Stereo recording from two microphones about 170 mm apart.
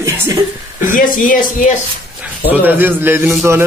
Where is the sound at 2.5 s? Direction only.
10° right (ahead or behind).